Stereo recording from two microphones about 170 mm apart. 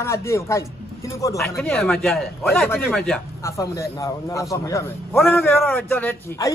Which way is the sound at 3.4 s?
20° left (ahead or behind).